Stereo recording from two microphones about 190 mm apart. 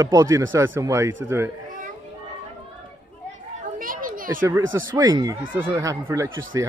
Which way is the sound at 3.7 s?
45° right (ahead or behind).